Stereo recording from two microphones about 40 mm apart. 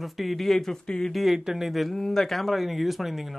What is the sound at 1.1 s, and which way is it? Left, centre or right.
Speech, centre.